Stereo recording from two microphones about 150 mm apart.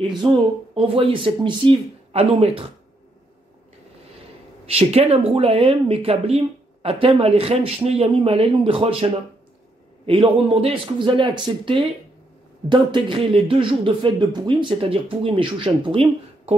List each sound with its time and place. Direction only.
0.2 s speech: 35° right (ahead or behind)
4.6 s speech: 40° right (ahead or behind)